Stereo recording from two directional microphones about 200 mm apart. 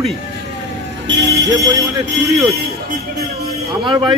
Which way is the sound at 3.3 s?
30° right (ahead or behind).